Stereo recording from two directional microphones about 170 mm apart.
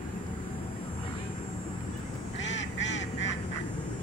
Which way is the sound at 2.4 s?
90° left.